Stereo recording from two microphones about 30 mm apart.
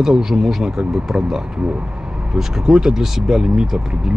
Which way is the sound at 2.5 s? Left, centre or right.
Centre.